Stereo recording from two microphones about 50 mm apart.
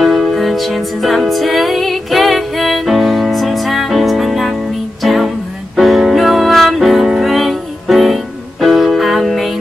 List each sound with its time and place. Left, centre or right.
0.0 s music: centre